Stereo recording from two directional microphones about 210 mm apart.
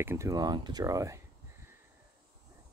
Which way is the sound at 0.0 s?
10° right (ahead or behind).